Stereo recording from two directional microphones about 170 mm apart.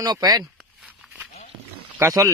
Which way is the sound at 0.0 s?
25° right (ahead or behind).